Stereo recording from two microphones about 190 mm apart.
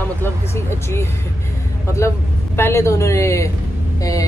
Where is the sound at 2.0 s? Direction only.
15° left (ahead or behind).